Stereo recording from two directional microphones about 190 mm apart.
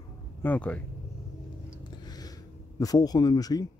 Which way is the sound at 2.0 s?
20° left (ahead or behind).